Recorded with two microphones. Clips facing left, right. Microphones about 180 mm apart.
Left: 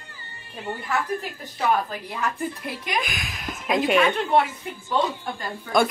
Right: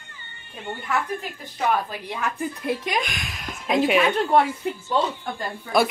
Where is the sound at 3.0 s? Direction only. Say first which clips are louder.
Even; centre (ahead or behind).